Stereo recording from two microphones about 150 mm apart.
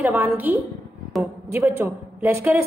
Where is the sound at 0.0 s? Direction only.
10° right (ahead or behind).